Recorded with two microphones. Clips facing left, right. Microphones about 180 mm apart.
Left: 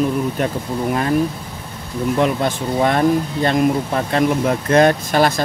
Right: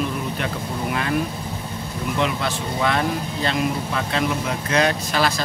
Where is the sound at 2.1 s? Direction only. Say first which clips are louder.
Left 5 dB; 45° left (ahead or behind).